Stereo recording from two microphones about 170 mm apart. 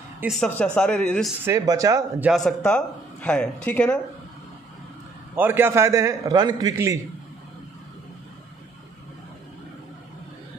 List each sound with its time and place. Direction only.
0.3 s speech: 5° left (ahead or behind)
1.4 s speech: 20° right (ahead or behind)
2.2 s speech: centre (ahead or behind)
5.3 s a man's voice: 15° right (ahead or behind)